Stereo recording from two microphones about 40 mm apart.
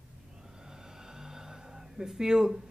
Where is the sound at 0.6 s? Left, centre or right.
Centre.